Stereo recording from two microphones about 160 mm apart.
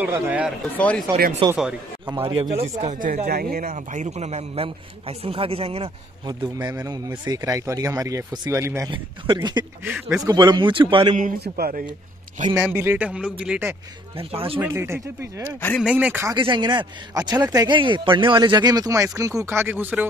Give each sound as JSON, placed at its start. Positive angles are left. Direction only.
{"t": 0.0, "sound": "a man's voice", "side_deg": -10}
{"t": 0.7, "sound": "speech", "side_deg": 10}
{"t": 1.4, "sound": "speech", "side_deg": -30}
{"t": 2.8, "sound": "a man's voice", "side_deg": -50}
{"t": 8.9, "sound": "speech", "side_deg": -30}
{"t": 9.8, "sound": "speech", "side_deg": -5}
{"t": 10.2, "sound": "speech", "side_deg": -25}
{"t": 11.1, "sound": "a man's voice", "side_deg": -70}
{"t": 12.6, "sound": "a man's voice", "side_deg": -10}
{"t": 14.1, "sound": "speech", "side_deg": -35}
{"t": 14.6, "sound": "a man's voice", "side_deg": -15}
{"t": 16.3, "sound": "speech", "side_deg": -30}